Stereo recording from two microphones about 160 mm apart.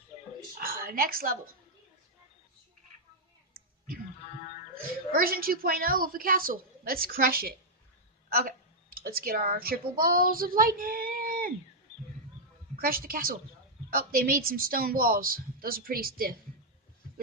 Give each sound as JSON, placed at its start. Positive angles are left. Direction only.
{"t": 0.6, "sound": "a sound", "side_deg": -65}
{"t": 4.7, "sound": "a woman's voice", "side_deg": -65}
{"t": 12.7, "sound": "a woman's voice", "side_deg": -65}